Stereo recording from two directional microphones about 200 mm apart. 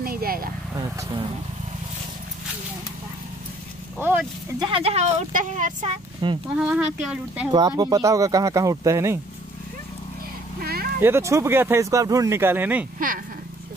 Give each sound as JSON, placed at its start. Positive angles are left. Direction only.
{"t": 0.0, "sound": "vehicle", "side_deg": -50}
{"t": 0.7, "sound": "speech", "side_deg": -20}
{"t": 4.6, "sound": "speech", "side_deg": -25}
{"t": 6.5, "sound": "speech", "side_deg": -5}
{"t": 7.5, "sound": "speech", "side_deg": -20}
{"t": 10.6, "sound": "a sound", "side_deg": -50}
{"t": 11.0, "sound": "speech", "side_deg": -10}